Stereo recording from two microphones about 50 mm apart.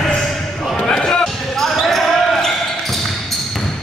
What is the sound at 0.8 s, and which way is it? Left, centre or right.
Basketball bounce, centre.